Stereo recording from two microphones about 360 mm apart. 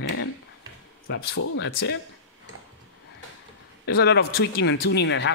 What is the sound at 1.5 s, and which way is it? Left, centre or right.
Speech, left.